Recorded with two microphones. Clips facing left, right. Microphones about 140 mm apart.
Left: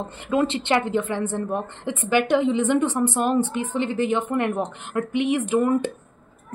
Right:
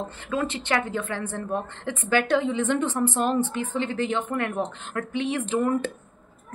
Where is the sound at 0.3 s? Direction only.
20° left (ahead or behind).